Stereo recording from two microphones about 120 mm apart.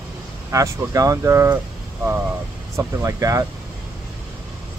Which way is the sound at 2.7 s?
25° right (ahead or behind).